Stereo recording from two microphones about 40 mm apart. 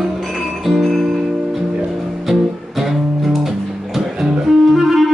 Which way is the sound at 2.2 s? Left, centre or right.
Centre.